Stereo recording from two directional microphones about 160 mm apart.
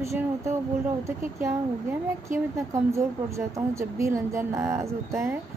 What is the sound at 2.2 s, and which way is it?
A woman's voice, 20° right (ahead or behind).